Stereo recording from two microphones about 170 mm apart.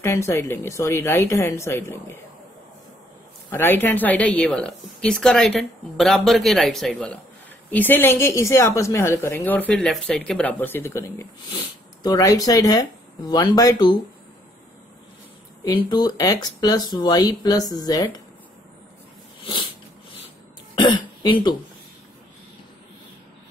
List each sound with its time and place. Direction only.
0.0 s a woman's voice: 15° left (ahead or behind)
3.5 s a woman's voice: 10° left (ahead or behind)
15.6 s speech: 25° left (ahead or behind)
20.7 s speech: 25° left (ahead or behind)